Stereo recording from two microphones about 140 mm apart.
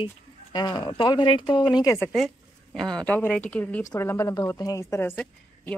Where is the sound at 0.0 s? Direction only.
30° left (ahead or behind).